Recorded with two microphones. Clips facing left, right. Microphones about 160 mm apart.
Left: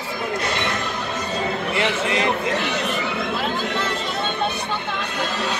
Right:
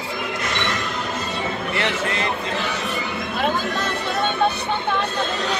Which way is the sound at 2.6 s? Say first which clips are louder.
Left 2 dB; 75° left (ahead or behind).